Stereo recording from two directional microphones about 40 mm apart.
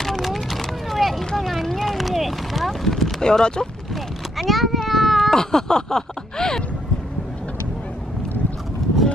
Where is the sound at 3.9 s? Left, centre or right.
Centre.